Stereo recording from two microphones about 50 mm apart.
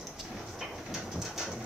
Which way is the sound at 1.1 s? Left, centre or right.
Centre.